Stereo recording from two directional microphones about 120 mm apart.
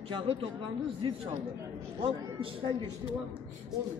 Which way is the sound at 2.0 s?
50° right (ahead or behind).